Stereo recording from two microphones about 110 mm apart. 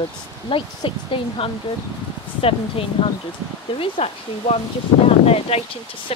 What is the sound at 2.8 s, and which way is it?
Speech, 55° left (ahead or behind).